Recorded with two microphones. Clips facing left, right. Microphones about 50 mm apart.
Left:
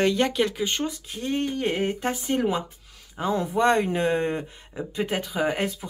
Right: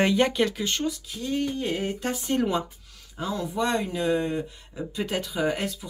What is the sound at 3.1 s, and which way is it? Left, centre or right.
Speech, left.